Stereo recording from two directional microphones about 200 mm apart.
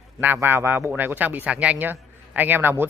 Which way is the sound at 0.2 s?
10° right (ahead or behind).